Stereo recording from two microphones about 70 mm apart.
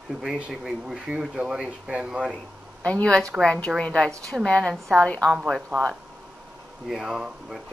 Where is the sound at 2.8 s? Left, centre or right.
Centre.